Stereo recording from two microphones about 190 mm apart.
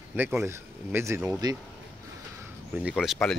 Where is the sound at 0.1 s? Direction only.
5° right (ahead or behind).